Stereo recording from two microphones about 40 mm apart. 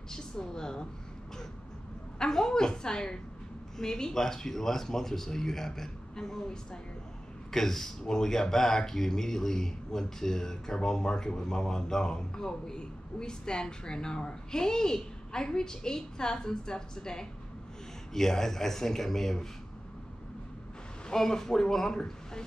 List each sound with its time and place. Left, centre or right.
0.1 s speech: centre
2.1 s speech: centre
21.1 s speech: centre